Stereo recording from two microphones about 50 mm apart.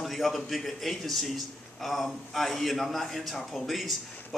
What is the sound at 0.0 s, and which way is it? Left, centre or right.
A man's voice, centre.